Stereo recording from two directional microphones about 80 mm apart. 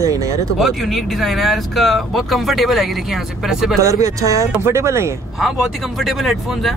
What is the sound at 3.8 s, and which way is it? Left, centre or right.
Speech, right.